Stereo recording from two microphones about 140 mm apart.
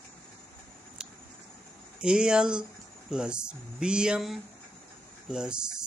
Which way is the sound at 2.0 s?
5° right (ahead or behind).